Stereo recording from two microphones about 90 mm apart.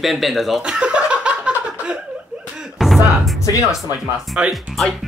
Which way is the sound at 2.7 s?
Centre (ahead or behind).